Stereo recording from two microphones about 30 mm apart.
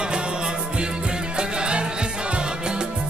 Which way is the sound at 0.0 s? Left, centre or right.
Right.